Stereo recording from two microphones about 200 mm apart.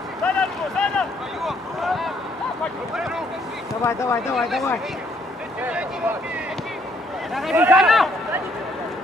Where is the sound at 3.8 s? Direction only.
15° left (ahead or behind).